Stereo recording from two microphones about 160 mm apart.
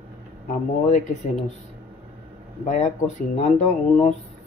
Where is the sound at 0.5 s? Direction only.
50° left (ahead or behind).